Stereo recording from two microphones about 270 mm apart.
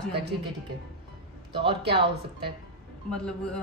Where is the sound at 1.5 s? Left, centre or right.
Right.